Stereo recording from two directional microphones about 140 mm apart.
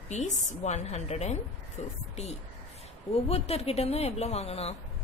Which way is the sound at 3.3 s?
45° left (ahead or behind).